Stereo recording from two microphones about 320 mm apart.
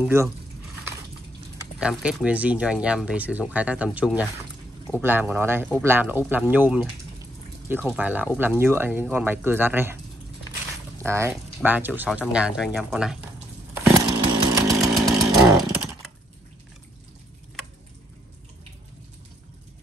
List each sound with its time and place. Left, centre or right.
1.8 s speech: centre
11.1 s speech: centre
13.9 s chainsaw: centre